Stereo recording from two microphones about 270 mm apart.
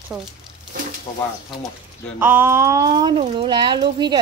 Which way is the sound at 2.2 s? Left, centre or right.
Centre.